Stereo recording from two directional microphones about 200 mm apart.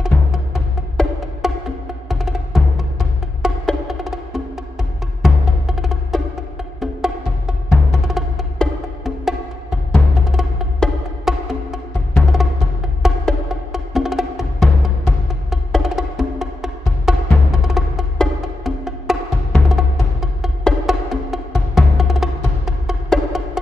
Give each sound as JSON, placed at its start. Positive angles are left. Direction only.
{"t": 0.0, "sound": "music", "side_deg": 0}
{"t": 1.4, "sound": "music", "side_deg": 0}